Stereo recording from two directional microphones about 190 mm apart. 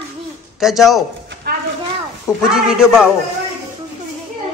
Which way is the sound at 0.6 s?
Centre (ahead or behind).